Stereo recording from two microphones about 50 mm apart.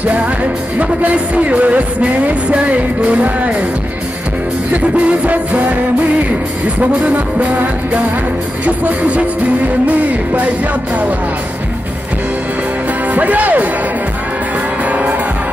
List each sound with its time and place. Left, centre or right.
0.7 s music: right
4.6 s music: right
6.8 s music: right
13.1 s speech: right
14.9 s music: right